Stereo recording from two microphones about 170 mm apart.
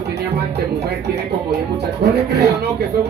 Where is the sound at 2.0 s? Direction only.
75° right (ahead or behind).